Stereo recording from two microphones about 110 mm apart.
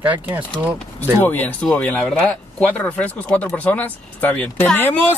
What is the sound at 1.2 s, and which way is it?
Speech, 15° left (ahead or behind).